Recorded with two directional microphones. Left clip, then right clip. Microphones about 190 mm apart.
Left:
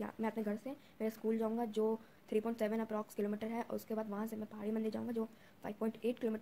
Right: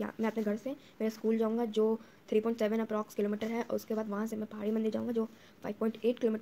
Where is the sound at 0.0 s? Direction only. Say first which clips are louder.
Right 6 dB; centre (ahead or behind).